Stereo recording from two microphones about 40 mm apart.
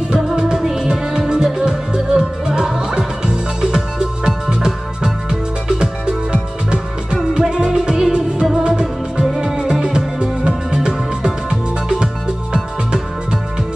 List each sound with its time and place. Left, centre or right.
0.1 s music: right